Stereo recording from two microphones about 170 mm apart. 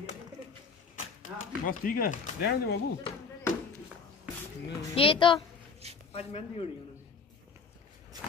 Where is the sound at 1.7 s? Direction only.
55° left (ahead or behind).